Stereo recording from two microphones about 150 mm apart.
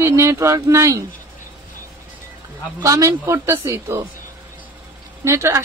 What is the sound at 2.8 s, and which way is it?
A woman's voice, 20° right (ahead or behind).